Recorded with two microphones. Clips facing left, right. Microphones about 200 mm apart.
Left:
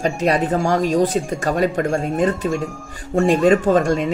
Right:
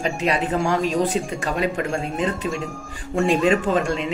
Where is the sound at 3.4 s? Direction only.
40° left (ahead or behind).